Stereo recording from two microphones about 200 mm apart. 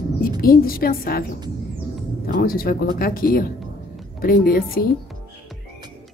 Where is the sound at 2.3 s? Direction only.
45° left (ahead or behind).